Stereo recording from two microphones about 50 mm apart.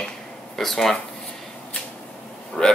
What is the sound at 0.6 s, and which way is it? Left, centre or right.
Speech, centre.